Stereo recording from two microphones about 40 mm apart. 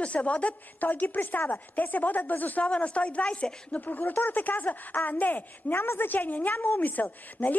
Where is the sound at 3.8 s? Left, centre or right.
Left.